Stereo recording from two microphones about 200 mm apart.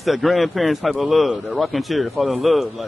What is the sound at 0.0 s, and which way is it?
A man's voice, centre (ahead or behind).